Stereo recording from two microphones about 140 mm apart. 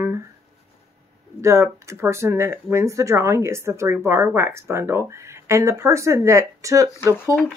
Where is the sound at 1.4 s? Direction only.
20° right (ahead or behind).